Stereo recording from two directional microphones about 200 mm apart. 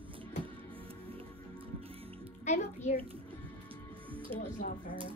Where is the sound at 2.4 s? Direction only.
35° left (ahead or behind).